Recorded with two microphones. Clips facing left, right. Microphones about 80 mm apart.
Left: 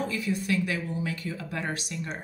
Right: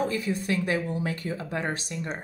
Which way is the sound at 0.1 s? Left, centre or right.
Right.